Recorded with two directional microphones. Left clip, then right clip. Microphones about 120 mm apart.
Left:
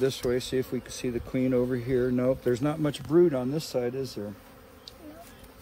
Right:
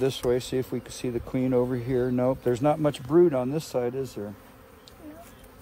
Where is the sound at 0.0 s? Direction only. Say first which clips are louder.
Right 2 dB; 60° right (ahead or behind).